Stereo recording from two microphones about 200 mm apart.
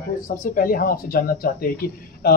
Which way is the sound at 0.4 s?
45° left (ahead or behind).